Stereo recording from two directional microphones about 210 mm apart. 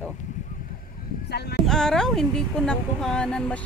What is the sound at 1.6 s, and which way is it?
Speech, 5° left (ahead or behind).